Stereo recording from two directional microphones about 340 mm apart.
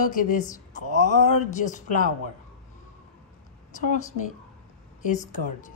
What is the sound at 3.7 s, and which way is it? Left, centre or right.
Speech, left.